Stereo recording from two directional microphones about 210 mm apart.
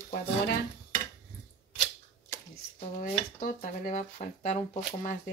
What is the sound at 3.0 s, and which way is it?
Speech, 40° left (ahead or behind).